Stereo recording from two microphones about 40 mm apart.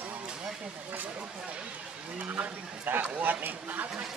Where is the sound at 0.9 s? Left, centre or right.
Right.